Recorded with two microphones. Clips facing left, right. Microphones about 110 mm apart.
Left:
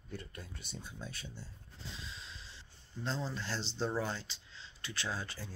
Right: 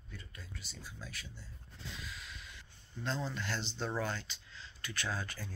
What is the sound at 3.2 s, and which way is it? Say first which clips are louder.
Speech: even; 30° left (ahead or behind).